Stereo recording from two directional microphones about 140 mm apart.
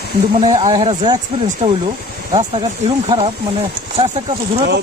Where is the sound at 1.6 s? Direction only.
40° right (ahead or behind).